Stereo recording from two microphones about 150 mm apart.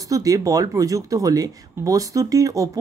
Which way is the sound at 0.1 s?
25° right (ahead or behind).